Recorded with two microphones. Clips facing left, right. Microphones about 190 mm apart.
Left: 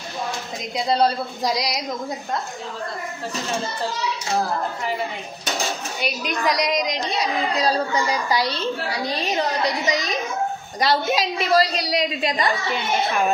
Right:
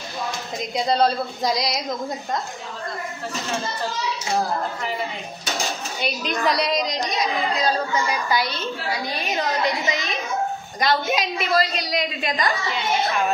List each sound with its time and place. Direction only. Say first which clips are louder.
0.7 s speech: even; 10° left (ahead or behind)
5.9 s speech: right 2 dB; 10° left (ahead or behind)
7.1 s a woman's voice: even; 35° left (ahead or behind)